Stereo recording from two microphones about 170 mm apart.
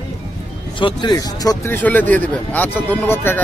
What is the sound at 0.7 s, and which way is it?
Speech, 25° left (ahead or behind).